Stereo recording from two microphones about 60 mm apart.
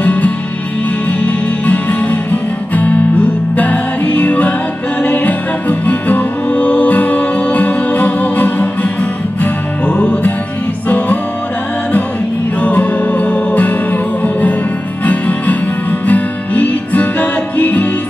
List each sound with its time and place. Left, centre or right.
0.0 s music: left
12.6 s music: left
15.0 s music: left